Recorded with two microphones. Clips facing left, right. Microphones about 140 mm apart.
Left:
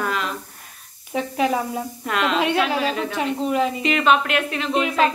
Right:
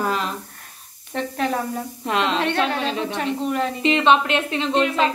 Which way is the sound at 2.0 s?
30° right (ahead or behind).